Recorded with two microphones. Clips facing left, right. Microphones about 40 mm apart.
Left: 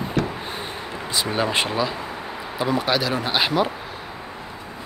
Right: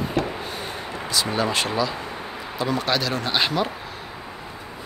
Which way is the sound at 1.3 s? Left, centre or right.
Left.